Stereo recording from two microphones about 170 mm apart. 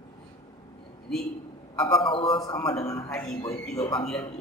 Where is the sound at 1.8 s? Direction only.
30° left (ahead or behind).